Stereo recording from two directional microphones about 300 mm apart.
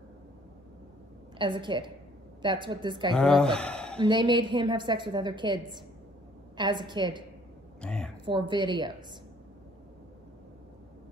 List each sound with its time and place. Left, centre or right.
1.4 s a woman's voice: centre
3.2 s speech: centre
4.0 s a woman's voice: centre
7.8 s a sound: centre
8.3 s a woman's voice: centre